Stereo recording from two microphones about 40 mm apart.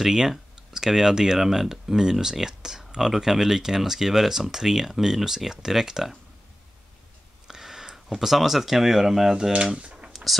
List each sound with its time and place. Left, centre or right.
0.0 s speech: centre
7.4 s speech: centre
9.6 s speech: right